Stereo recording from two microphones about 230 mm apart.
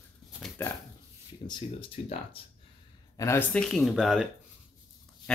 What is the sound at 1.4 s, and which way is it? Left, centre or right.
Speech, left.